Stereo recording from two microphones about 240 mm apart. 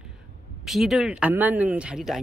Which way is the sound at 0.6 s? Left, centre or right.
Centre.